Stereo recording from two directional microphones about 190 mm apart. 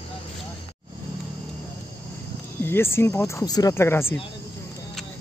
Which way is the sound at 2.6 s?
10° left (ahead or behind).